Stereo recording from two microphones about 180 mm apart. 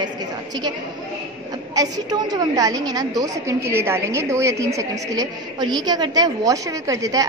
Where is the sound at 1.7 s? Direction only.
20° right (ahead or behind).